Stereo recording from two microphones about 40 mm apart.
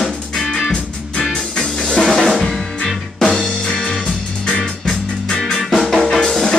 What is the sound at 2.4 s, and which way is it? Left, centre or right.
Music, centre.